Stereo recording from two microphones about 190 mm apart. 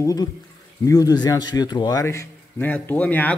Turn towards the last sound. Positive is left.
turn(degrees=10)  # may be behind; listen again after turning